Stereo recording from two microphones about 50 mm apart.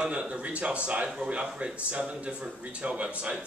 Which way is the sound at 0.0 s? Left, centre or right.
Right.